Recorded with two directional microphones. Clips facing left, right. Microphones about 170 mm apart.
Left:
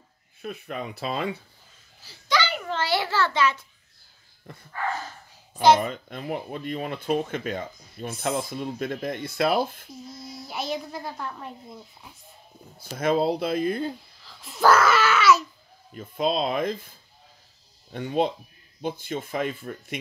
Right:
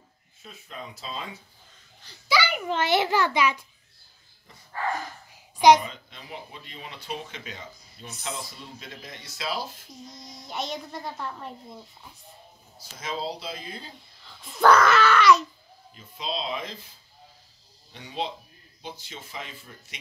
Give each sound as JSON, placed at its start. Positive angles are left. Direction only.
{"t": 0.4, "sound": "speech", "side_deg": 65}
{"t": 2.2, "sound": "a child's voice", "side_deg": -10}
{"t": 4.5, "sound": "speech", "side_deg": 55}
{"t": 5.8, "sound": "speech", "side_deg": 55}
{"t": 10.0, "sound": "a child's voice", "side_deg": 5}
{"t": 12.7, "sound": "speech", "side_deg": 55}
{"t": 14.2, "sound": "a child's voice", "side_deg": 0}
{"t": 15.9, "sound": "speech", "side_deg": 50}
{"t": 17.9, "sound": "speech", "side_deg": 50}